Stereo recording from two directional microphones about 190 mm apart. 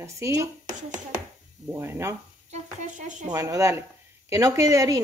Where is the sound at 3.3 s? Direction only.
15° right (ahead or behind).